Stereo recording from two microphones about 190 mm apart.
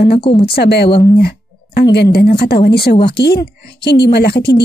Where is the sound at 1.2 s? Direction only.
55° left (ahead or behind).